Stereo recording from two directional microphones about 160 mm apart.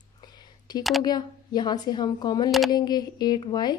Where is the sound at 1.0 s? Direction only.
25° left (ahead or behind).